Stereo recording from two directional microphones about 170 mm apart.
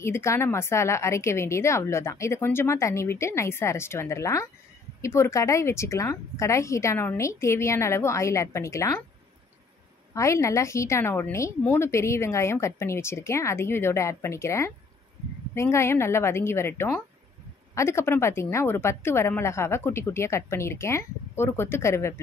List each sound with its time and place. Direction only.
0.0 s a woman's voice: 15° left (ahead or behind)
10.1 s a woman's voice: 20° left (ahead or behind)